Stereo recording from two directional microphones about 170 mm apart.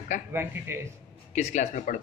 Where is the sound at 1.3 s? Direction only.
45° left (ahead or behind).